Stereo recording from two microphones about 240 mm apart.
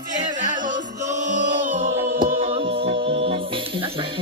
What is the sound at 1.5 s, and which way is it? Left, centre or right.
Music, right.